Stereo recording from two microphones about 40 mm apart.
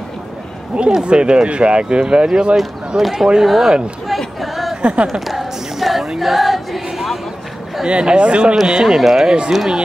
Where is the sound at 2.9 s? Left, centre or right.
Centre.